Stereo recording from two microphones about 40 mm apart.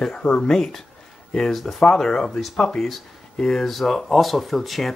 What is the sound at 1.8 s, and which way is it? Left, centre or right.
Speech, centre.